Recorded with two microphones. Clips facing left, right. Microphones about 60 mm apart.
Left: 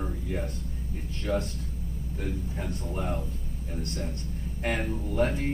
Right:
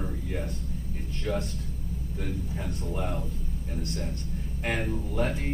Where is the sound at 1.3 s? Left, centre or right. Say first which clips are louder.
Left 2 dB; left.